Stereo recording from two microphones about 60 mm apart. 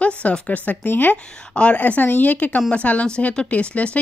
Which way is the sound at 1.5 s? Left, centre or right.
Centre.